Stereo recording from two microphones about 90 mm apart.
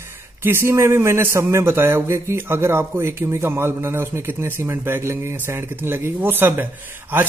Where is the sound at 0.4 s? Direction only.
25° right (ahead or behind).